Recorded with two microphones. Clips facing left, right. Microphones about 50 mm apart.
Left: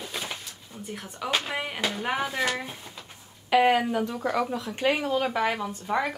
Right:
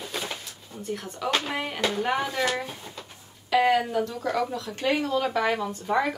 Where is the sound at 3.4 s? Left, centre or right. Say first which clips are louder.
Left 1 dB; left.